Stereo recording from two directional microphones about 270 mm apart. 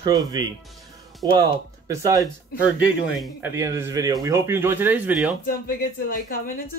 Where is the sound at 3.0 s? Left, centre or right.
Centre.